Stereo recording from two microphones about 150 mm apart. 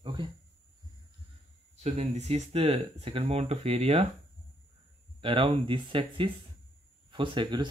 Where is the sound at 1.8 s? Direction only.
45° right (ahead or behind).